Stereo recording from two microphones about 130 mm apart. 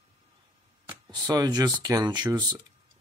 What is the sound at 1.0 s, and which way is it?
Speech, 30° right (ahead or behind).